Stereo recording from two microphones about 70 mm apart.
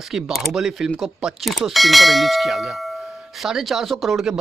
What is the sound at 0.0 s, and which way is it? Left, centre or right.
A man's voice, centre.